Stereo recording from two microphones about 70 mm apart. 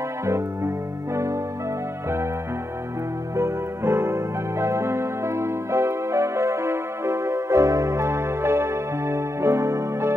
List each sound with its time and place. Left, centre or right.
0.2 s keyboard: right
3.3 s keyboard: right